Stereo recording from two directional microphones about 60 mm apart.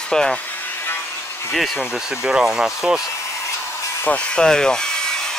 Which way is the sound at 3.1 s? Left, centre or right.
Left.